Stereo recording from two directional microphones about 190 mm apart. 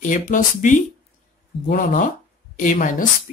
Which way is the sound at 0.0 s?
45° left (ahead or behind).